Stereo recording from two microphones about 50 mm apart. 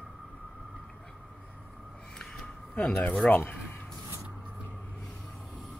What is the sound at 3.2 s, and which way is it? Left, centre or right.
Speech, left.